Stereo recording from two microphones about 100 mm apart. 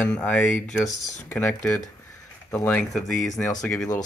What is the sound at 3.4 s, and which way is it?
Speech, 5° left (ahead or behind).